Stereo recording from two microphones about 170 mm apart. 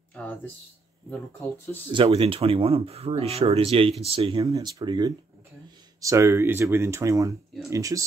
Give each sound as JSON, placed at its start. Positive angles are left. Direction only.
{"t": 0.1, "sound": "a sound", "side_deg": 10}
{"t": 1.9, "sound": "speech", "side_deg": -30}
{"t": 4.5, "sound": "speech", "side_deg": -20}